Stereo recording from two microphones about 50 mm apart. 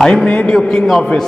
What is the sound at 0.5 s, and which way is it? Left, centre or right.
Speech, centre.